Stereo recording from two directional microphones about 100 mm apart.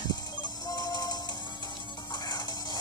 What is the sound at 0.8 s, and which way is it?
Music, 40° left (ahead or behind).